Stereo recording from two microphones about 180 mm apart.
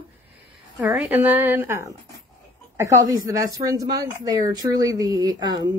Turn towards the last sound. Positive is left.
turn(degrees=-25)  # may be behind; listen again after turning